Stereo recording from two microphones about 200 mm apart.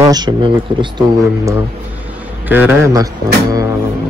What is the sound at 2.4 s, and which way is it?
Speech, 10° right (ahead or behind).